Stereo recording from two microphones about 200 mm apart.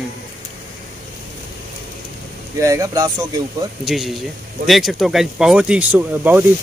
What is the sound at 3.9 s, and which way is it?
Speech, centre (ahead or behind).